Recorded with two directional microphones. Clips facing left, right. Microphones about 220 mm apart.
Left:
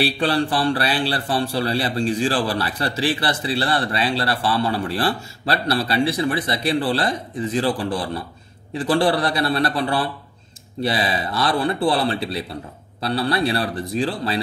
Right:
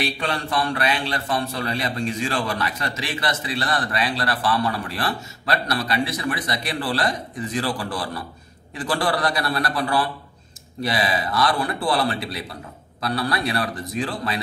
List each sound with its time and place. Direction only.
0.0 s a man's voice: 35° left (ahead or behind)